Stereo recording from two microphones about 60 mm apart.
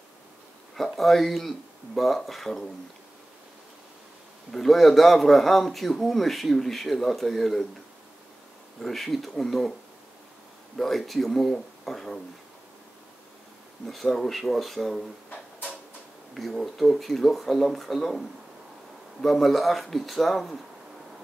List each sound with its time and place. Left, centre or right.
0.7 s a man's voice: centre
4.5 s a man's voice: centre
8.8 s a man's voice: centre
10.8 s a man's voice: centre
13.8 s a man's voice: centre
15.2 s drawer open or close: left
16.3 s a man's voice: centre
19.2 s a man's voice: centre